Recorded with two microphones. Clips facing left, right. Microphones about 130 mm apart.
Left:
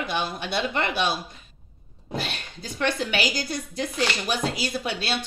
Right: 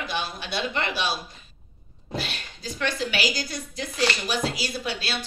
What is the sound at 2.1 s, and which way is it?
Speech, 55° left (ahead or behind).